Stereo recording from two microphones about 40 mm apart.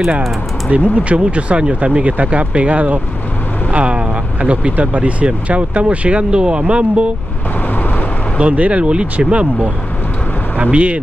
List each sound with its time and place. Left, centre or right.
0.7 s speech: right
4.7 s speech: right
8.4 s speech: right
10.7 s speech: right